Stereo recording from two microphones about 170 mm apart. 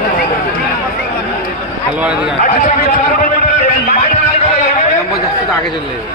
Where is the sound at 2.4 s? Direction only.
45° left (ahead or behind).